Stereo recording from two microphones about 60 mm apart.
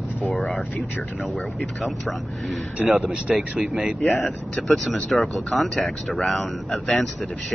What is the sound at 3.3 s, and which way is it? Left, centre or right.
Speech, centre.